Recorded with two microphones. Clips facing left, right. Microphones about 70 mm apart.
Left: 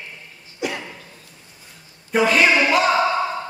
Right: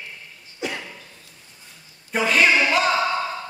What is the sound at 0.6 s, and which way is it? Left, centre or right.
Cough, centre.